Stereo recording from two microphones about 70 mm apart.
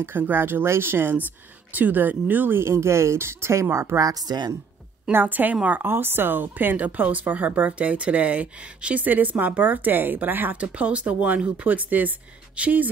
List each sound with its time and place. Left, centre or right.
0.0 s speech: right
4.1 s speech: right
5.1 s a woman's voice: right